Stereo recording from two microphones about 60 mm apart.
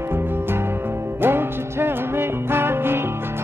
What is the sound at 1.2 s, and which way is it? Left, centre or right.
Music, right.